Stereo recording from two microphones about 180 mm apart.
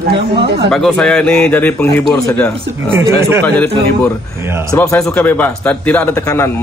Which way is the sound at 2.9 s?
15° right (ahead or behind).